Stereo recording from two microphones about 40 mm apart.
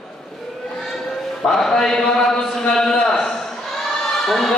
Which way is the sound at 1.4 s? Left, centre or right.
Centre.